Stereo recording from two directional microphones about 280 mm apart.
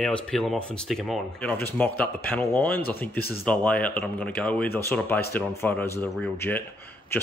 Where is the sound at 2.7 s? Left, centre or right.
Left.